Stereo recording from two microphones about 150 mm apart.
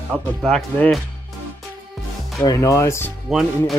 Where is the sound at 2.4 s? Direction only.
20° left (ahead or behind).